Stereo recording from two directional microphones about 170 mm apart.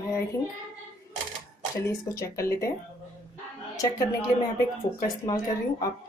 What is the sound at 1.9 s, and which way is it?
Speech, 15° left (ahead or behind).